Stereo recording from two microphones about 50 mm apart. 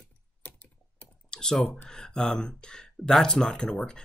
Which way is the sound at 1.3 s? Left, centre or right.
Centre.